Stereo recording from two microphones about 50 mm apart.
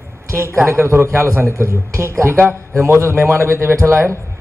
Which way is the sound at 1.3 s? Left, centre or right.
Right.